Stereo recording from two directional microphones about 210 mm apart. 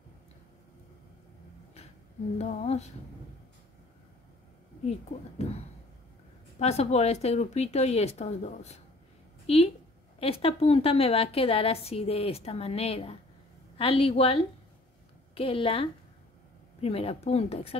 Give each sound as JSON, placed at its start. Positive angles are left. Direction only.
{"t": 2.3, "sound": "speech", "side_deg": 30}
{"t": 6.6, "sound": "a woman's voice", "side_deg": 30}